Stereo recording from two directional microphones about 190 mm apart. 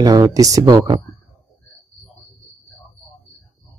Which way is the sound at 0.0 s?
20° right (ahead or behind).